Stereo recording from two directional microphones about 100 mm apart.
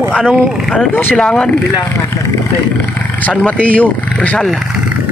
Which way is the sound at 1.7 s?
30° left (ahead or behind).